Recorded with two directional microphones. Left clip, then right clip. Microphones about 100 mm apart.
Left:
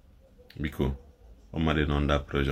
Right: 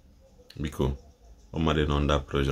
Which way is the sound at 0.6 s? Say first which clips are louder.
Right 1 dB; 25° right (ahead or behind).